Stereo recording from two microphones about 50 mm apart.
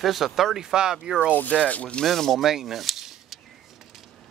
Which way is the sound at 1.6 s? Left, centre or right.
Left.